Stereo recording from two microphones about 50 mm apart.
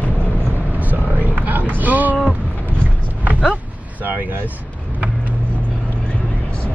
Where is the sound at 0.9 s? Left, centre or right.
Right.